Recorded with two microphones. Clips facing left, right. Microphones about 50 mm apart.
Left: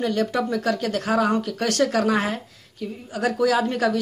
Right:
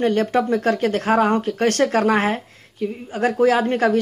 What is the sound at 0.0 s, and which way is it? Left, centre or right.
Speech, right.